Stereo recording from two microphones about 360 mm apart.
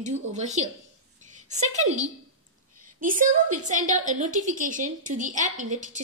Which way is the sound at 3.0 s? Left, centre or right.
Right.